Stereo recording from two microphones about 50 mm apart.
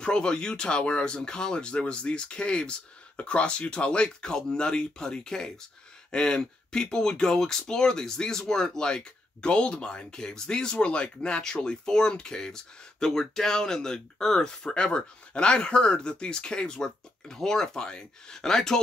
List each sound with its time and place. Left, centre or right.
0.0 s speech: centre